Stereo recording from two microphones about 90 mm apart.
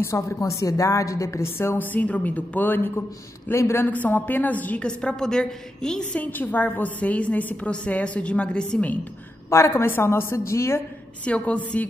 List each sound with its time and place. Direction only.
0.0 s a woman's voice: 35° left (ahead or behind); by 6.2 s 10° left (ahead or behind)
6.2 s a woman's voice: 20° left (ahead or behind)
9.5 s a woman's voice: 30° left (ahead or behind)
11.2 s a woman's voice: 15° left (ahead or behind)